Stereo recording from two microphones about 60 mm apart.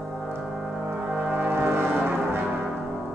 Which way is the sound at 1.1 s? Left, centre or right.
Right.